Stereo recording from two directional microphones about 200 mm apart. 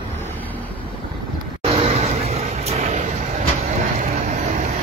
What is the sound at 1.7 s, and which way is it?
Vehicle, 30° right (ahead or behind).